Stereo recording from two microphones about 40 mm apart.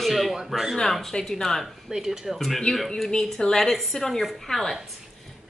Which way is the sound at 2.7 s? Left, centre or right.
Centre.